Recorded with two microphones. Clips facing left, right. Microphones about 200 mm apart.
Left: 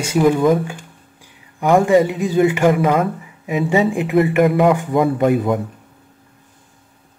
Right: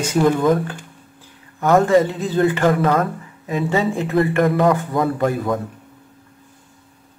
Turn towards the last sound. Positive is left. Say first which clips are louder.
# left 4 dB
turn(degrees=20)  # may be behind; listen again after turning